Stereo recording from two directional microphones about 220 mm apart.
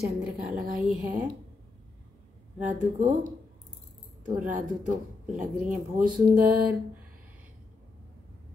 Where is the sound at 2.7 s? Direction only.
35° right (ahead or behind).